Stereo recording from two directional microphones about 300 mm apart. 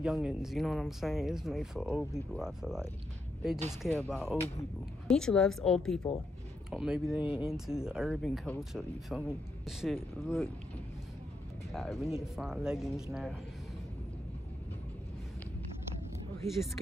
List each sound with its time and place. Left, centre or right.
0.0 s speech: centre
11.7 s speech: centre